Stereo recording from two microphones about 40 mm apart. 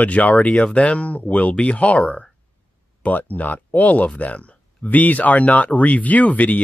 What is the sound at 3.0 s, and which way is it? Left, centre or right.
Speech, left.